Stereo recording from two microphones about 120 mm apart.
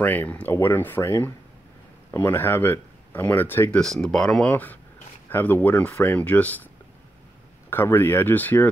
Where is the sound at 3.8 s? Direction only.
5° left (ahead or behind).